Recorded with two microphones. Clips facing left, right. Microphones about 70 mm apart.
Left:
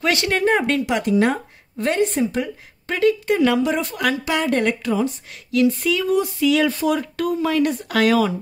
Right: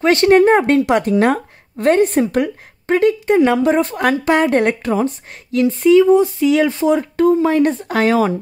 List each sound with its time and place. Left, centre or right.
0.0 s speech: right
2.9 s speech: right
3.6 s speech: right